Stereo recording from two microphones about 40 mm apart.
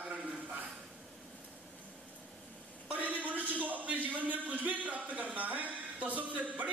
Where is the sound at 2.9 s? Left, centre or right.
Right.